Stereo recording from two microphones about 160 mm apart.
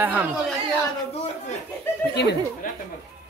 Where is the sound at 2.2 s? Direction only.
90° left.